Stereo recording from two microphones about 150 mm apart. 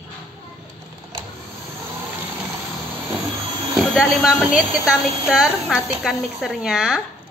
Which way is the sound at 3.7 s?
Centre (ahead or behind).